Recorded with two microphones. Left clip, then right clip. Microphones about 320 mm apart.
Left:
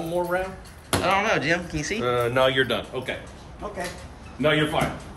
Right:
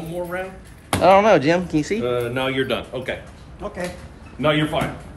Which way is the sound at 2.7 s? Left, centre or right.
Centre.